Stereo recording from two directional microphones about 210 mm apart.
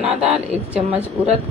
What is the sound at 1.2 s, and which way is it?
Speech, 25° right (ahead or behind).